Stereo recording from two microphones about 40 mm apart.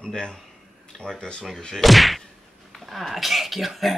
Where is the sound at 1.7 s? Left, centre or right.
Centre.